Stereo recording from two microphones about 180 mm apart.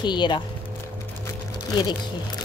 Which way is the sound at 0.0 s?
25° left (ahead or behind).